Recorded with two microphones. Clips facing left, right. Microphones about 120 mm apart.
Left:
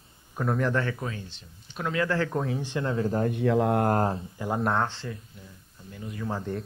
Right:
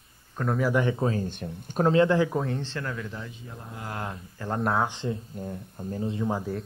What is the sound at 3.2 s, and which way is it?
Speech, 65° left (ahead or behind).